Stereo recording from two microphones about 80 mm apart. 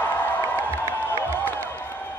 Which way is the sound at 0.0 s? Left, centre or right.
Left.